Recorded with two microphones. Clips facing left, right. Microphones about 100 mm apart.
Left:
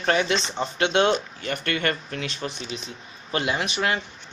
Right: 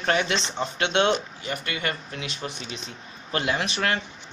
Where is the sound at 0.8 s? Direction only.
35° left (ahead or behind).